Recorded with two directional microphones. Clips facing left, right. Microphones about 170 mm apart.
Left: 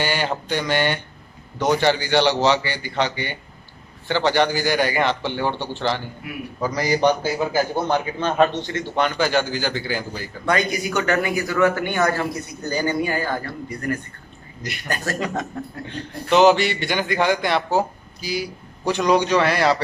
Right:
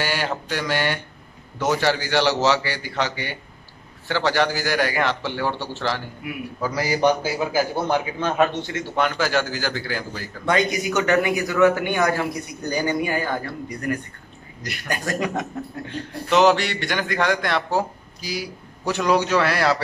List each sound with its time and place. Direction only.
0.0 s mantra: centre (ahead or behind)
0.5 s a man's voice: centre (ahead or behind)
10.4 s a man's voice: 20° right (ahead or behind)
14.6 s speech: centre (ahead or behind)
14.9 s a man's voice: 15° right (ahead or behind)
16.3 s a man's voice: centre (ahead or behind)